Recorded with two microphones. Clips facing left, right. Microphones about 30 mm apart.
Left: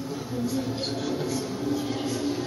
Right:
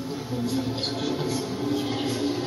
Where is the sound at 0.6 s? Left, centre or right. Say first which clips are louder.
Right 1 dB; right.